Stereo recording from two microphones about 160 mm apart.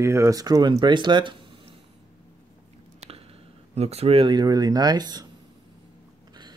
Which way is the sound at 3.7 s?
40° right (ahead or behind).